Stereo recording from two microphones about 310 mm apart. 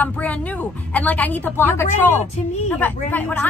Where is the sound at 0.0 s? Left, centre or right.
Centre.